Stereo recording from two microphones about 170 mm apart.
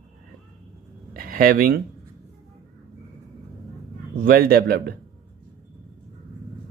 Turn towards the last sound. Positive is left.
turn(degrees=-65)  # may be behind; listen again after turning